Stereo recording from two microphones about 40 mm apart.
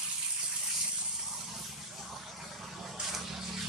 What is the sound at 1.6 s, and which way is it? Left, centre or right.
Vehicle, centre.